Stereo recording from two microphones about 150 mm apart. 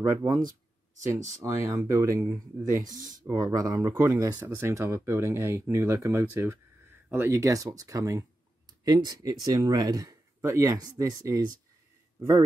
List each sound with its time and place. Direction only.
0.0 s speech: 20° right (ahead or behind)
0.4 s a sound: 60° right (ahead or behind)
1.0 s speech: 20° right (ahead or behind)
3.3 s speech: 20° right (ahead or behind)